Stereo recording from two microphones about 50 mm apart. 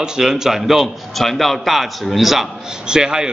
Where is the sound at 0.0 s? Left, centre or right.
Centre.